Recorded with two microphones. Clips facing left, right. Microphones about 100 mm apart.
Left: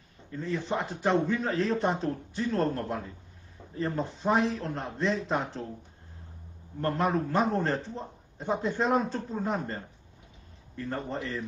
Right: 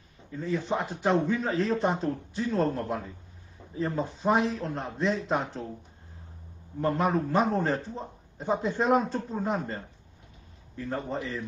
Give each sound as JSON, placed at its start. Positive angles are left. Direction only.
{"t": 0.3, "sound": "a man's voice", "side_deg": -5}
{"t": 6.8, "sound": "a man's voice", "side_deg": 0}